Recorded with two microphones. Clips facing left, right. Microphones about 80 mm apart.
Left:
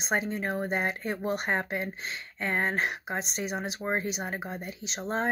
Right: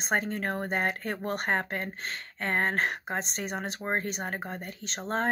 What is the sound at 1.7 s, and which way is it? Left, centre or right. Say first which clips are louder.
Speech: left 1 dB; right.